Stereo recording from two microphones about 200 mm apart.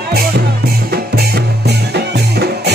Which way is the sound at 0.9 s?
50° right (ahead or behind).